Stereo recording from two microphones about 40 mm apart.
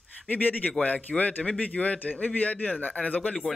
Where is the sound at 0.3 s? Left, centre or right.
Left.